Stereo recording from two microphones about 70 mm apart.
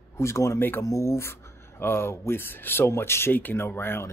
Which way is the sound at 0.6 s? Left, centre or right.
Left.